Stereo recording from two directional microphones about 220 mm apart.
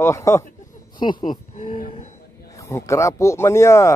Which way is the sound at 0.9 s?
20° left (ahead or behind).